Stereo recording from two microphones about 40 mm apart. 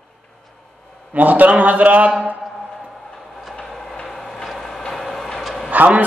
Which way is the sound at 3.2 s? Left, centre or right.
Centre.